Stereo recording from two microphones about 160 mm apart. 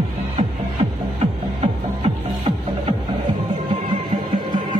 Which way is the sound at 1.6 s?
35° right (ahead or behind).